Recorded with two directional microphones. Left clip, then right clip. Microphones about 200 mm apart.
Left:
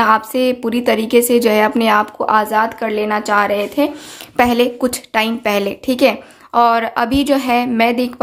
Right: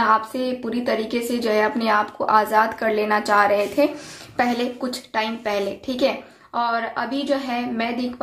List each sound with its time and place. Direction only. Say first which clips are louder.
0.0 s a woman's voice: left 6 dB; 40° left (ahead or behind)
4.4 s speech: left 9 dB; 50° left (ahead or behind)